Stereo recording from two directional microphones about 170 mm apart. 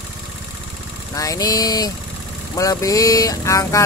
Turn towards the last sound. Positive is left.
turn(degrees=20)  # may be behind; listen again after turning